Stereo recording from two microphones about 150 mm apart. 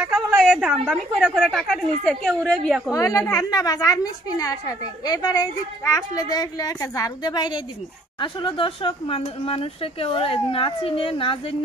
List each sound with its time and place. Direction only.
0.0 s a woman's voice: centre (ahead or behind)
2.9 s a woman's voice: 20° left (ahead or behind)